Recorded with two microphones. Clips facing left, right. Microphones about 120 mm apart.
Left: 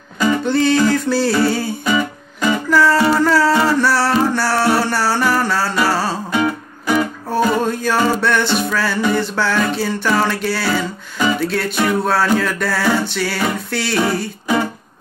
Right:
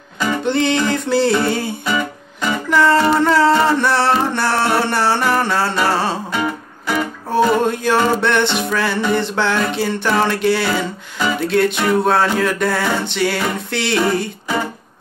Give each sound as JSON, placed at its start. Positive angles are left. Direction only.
{"t": 0.5, "sound": "music", "side_deg": -20}
{"t": 1.9, "sound": "music", "side_deg": 5}
{"t": 2.7, "sound": "music", "side_deg": -25}
{"t": 6.3, "sound": "music", "side_deg": 5}
{"t": 7.3, "sound": "music", "side_deg": -20}